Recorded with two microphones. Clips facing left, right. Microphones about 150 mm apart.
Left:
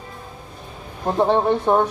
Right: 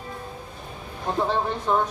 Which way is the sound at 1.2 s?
55° left (ahead or behind).